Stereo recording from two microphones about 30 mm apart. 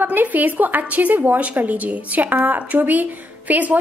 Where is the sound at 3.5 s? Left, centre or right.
Right.